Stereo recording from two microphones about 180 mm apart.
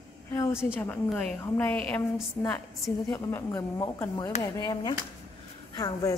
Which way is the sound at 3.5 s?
25° left (ahead or behind).